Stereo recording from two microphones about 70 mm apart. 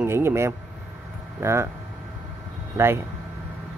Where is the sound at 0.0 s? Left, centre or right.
Right.